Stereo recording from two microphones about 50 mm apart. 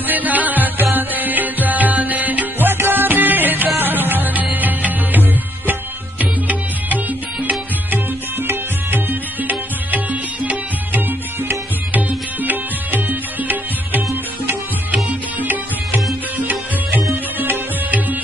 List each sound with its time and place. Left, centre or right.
0.0 s music: right